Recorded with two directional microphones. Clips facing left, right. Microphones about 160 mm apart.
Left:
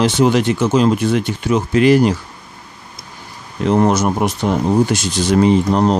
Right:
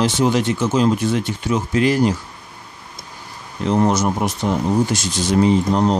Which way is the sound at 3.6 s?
60° left (ahead or behind).